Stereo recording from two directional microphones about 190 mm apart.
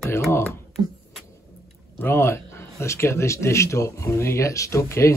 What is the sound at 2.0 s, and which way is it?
Speech, 15° left (ahead or behind).